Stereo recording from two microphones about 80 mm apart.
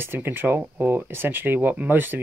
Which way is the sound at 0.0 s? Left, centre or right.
Right.